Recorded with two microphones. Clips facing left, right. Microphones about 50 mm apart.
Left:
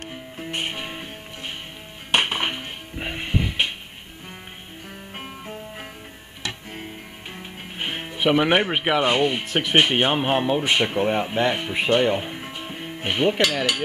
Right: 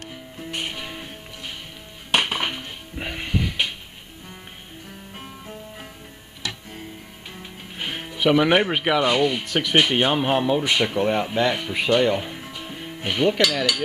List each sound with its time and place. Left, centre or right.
0.0 s music: left
2.1 s music: centre
5.1 s music: left
7.3 s music: left
9.4 s speech: centre